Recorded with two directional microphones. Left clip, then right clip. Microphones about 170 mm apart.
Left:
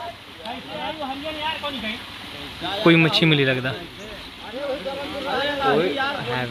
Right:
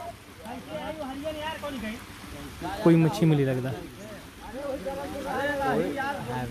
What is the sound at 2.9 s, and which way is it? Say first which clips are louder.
Speech: left 6 dB; 10° right (ahead or behind).